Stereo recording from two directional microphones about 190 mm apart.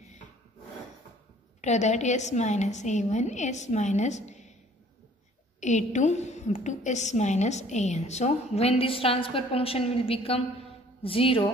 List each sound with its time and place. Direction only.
1.6 s a woman's voice: 35° left (ahead or behind)
5.6 s a woman's voice: 40° left (ahead or behind)